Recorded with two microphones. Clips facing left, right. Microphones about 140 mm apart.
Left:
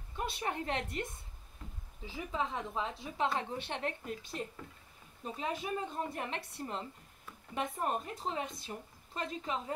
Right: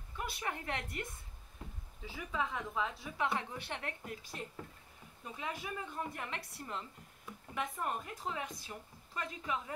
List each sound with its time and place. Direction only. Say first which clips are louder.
0.2 s a woman's voice: left 4 dB; 25° left (ahead or behind)
2.0 s a woman's voice: left 2 dB; 25° left (ahead or behind)